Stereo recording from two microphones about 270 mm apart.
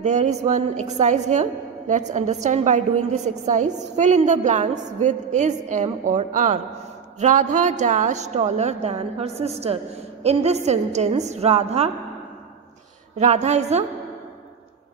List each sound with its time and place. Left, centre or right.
0.0 s a woman's voice: right
13.2 s a woman's voice: right